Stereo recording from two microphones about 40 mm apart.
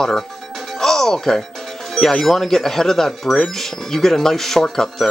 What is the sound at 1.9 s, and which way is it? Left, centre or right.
Speech, centre.